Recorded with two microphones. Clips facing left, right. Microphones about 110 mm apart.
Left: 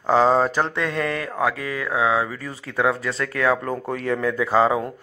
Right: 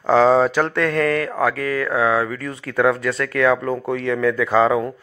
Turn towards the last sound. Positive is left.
turn(degrees=30)  # may be behind; listen again after turning